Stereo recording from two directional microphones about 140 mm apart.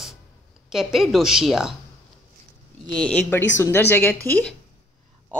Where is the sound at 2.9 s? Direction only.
10° left (ahead or behind).